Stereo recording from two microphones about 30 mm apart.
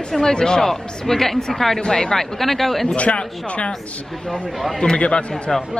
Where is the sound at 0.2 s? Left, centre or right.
Left.